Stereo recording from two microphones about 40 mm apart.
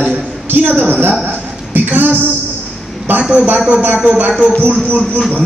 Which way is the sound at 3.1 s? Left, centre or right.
Right.